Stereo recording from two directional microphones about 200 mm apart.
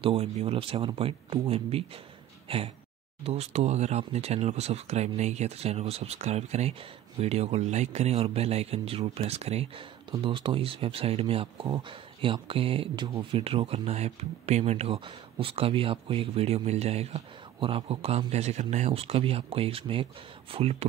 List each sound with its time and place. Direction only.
0.0 s speech: 30° right (ahead or behind)